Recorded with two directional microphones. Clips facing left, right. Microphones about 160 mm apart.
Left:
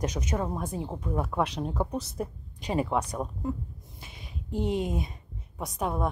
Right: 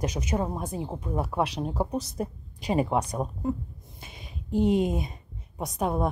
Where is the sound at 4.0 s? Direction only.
20° right (ahead or behind).